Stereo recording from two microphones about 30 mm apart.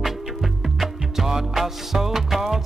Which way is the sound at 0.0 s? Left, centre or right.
Centre.